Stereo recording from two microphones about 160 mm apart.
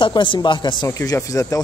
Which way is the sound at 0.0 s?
30° left (ahead or behind).